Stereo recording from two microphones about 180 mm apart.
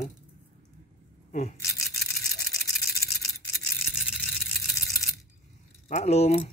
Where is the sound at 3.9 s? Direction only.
Centre (ahead or behind).